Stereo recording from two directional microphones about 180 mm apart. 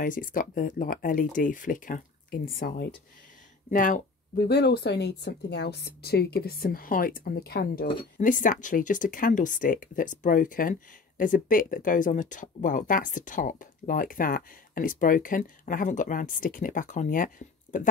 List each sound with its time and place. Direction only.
0.0 s speech: 50° left (ahead or behind)
3.7 s speech: 45° left (ahead or behind)